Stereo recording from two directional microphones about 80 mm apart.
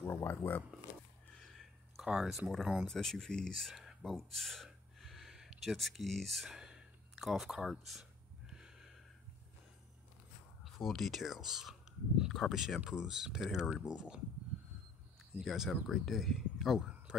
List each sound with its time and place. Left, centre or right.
0.0 s speech: left
1.3 s a sound: centre
2.9 s speech: centre
4.6 s a sound: centre
10.6 s speech: centre
15.3 s speech: centre